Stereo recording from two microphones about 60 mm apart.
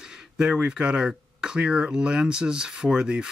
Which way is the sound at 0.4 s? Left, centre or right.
Centre.